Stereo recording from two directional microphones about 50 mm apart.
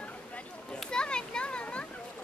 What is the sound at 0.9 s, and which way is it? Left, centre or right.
Children playing, centre.